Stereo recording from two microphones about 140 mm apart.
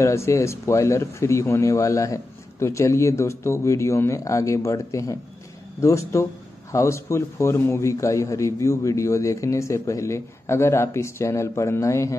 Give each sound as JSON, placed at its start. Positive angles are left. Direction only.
{"t": 0.0, "sound": "a man's voice", "side_deg": 20}